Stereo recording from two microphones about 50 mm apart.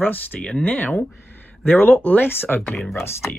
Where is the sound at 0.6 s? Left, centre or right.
Left.